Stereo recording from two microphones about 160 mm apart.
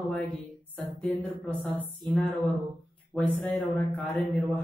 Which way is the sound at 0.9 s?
10° left (ahead or behind).